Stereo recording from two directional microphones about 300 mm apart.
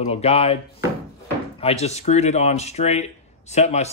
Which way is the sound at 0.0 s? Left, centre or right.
Centre.